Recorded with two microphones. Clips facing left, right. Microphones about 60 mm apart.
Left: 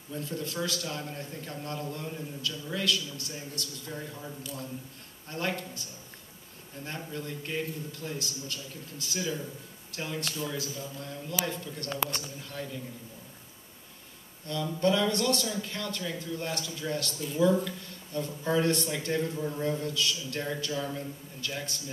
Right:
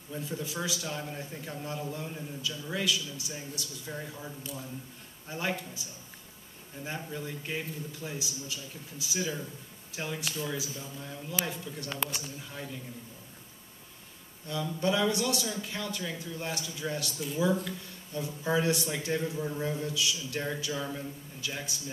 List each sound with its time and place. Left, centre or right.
0.1 s a man's voice: centre
5.3 s a man's voice: centre
7.1 s a man's voice: centre
14.5 s a man's voice: centre